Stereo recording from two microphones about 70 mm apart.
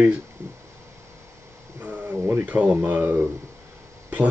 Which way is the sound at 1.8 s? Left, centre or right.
Right.